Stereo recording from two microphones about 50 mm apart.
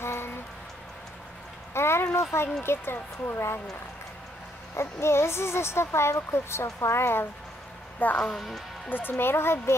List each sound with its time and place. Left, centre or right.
0.0 s music: left
1.7 s a sound: left
2.6 s speech: left
4.7 s speech: left
8.0 s speech: left
8.4 s speech: centre
8.8 s speech: left